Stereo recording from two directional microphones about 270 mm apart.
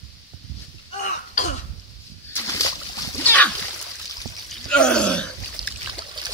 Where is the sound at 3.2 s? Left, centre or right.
Centre.